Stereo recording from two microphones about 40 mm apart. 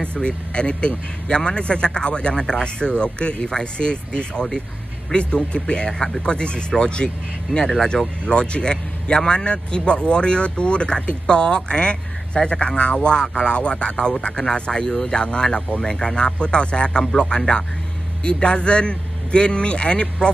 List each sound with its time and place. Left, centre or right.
0.0 s a man's voice: left